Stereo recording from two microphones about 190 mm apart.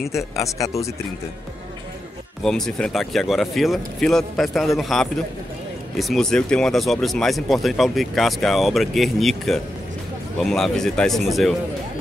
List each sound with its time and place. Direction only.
0.0 s speech: centre (ahead or behind)
0.4 s speech: 15° left (ahead or behind)
2.4 s speech: 5° left (ahead or behind)